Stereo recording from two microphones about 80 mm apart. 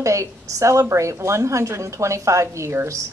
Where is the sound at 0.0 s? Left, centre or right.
Right.